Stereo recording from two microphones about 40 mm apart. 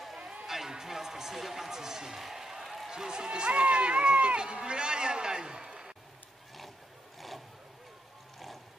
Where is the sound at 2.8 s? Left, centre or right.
Centre.